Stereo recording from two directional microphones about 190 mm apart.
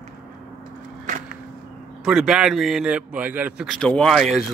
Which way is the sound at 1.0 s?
45° right (ahead or behind).